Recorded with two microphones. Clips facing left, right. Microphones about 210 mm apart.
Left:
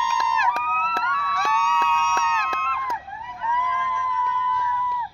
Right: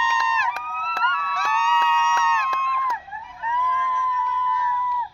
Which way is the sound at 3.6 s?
60° left (ahead or behind).